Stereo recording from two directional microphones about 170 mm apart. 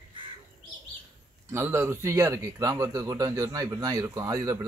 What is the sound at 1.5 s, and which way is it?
A man's voice, 15° right (ahead or behind).